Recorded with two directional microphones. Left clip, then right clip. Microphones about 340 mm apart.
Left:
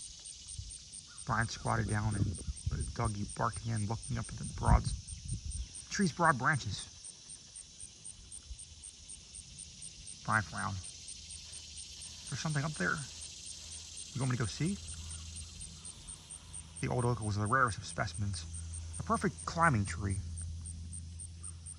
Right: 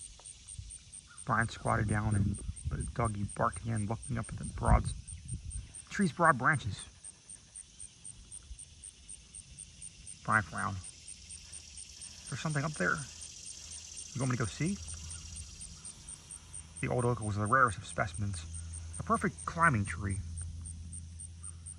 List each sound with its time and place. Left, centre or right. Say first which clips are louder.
1.2 s speech: right 3 dB; centre
10.2 s speech: right 3 dB; centre
12.3 s speech: right 2 dB; centre
14.1 s speech: right 2 dB; centre
16.8 s speech: right 2 dB; centre